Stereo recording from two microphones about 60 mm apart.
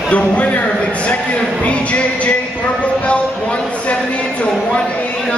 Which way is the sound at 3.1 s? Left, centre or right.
Left.